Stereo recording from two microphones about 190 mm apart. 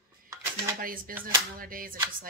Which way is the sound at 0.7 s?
50° right (ahead or behind).